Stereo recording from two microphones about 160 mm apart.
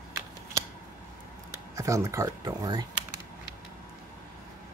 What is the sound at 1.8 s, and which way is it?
Speech, 20° right (ahead or behind).